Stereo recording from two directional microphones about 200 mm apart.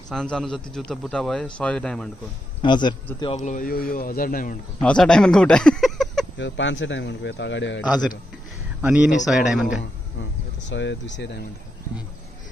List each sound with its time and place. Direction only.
0.1 s a man's voice: centre (ahead or behind)
2.6 s a man's voice: 20° left (ahead or behind)
3.3 s a man's voice: 40° left (ahead or behind)
4.7 s speech: 5° left (ahead or behind)
6.3 s a man's voice: 65° left (ahead or behind)
8.8 s a man's voice: 5° right (ahead or behind)
10.7 s speech: 65° left (ahead or behind)